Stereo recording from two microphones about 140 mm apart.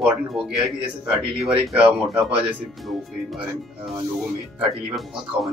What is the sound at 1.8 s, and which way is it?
Speech, 40° right (ahead or behind).